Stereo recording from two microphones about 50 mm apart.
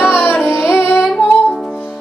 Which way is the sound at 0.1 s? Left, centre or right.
Left.